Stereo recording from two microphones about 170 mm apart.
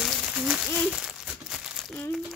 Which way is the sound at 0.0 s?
Centre (ahead or behind).